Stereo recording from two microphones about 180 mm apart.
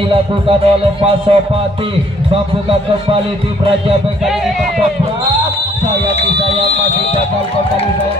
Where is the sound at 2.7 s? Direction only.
30° right (ahead or behind).